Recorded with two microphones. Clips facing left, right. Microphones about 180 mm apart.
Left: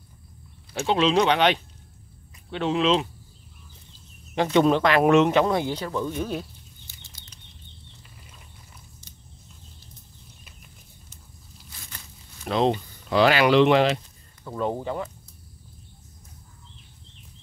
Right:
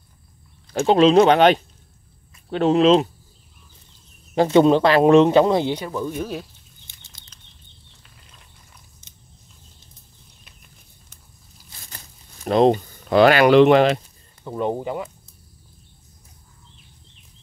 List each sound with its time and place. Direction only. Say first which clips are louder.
0.7 s speech: right 7 dB; 45° right (ahead or behind)
4.4 s speech: right 5 dB; 30° right (ahead or behind)
5.8 s speech: right 1 dB; 10° right (ahead or behind)
12.4 s speech: right 7 dB; 45° right (ahead or behind)
14.4 s speech: right 3 dB; 20° right (ahead or behind)